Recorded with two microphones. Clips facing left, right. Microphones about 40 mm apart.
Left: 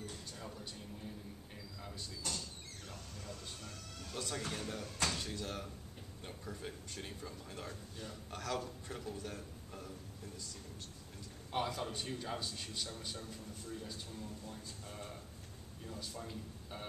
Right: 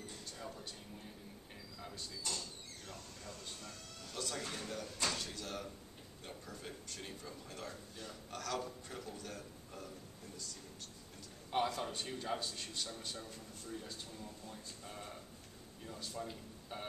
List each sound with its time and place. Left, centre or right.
1.8 s speech: centre
3.6 s a man's voice: centre
8.5 s a man's voice: centre
9.1 s a man's voice: centre
11.5 s a man's voice: centre